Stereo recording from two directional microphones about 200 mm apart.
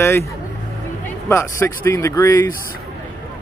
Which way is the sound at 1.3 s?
15° left (ahead or behind).